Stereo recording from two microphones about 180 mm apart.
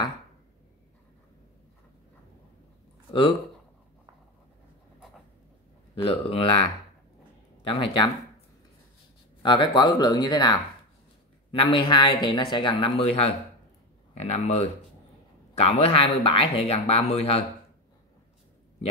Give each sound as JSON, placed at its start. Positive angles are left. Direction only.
{"t": 3.1, "sound": "speech", "side_deg": 30}
{"t": 6.0, "sound": "speech", "side_deg": 30}
{"t": 7.6, "sound": "speech", "side_deg": 30}
{"t": 9.4, "sound": "speech", "side_deg": 25}
{"t": 11.5, "sound": "speech", "side_deg": 30}